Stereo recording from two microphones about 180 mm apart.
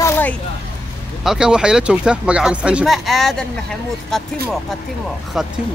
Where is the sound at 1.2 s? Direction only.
5° right (ahead or behind).